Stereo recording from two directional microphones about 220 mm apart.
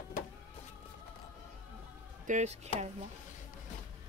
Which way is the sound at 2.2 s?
30° right (ahead or behind).